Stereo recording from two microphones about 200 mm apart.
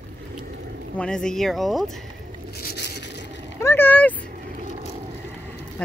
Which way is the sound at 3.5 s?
10° left (ahead or behind).